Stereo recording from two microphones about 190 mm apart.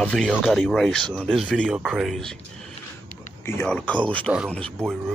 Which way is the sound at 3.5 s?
10° left (ahead or behind).